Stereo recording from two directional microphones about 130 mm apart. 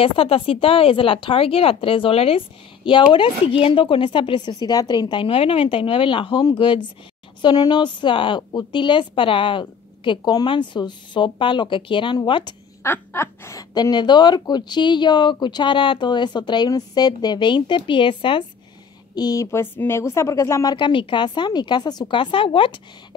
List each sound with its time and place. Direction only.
0.0 s speech: 45° left (ahead or behind)
12.8 s speech: 20° left (ahead or behind); by 18.4 s 40° left (ahead or behind)
19.1 s speech: 30° left (ahead or behind)
20.7 s speech: 40° left (ahead or behind)